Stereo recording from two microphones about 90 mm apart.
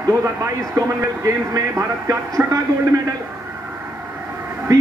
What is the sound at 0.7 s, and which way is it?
A man's voice, 35° right (ahead or behind).